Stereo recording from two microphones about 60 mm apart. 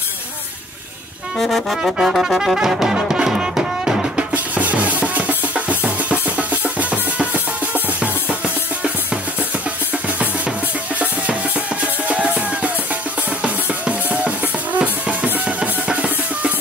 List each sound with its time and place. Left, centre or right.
1.4 s brass instrument: centre
1.8 s music: centre
4.3 s music: right
12.1 s music: right